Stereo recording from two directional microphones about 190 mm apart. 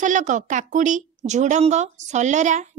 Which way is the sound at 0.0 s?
40° right (ahead or behind).